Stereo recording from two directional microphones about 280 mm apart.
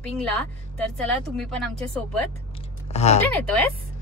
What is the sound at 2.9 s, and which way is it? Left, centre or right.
Speech, left.